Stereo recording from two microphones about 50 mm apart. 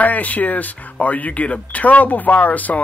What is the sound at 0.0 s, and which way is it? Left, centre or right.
Speech, left.